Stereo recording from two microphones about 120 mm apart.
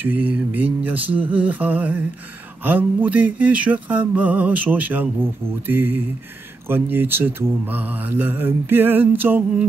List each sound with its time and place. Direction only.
0.0 s mantra: 15° right (ahead or behind)